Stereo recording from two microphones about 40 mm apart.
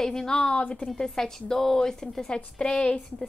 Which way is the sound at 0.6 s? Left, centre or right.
Left.